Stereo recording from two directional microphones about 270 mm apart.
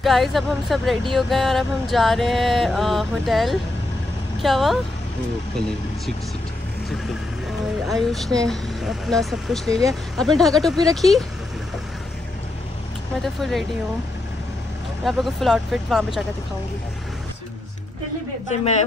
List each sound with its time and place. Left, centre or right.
0.0 s speech: centre
7.8 s speech: centre
13.2 s speech: centre
15.0 s speech: centre
18.5 s a woman's voice: left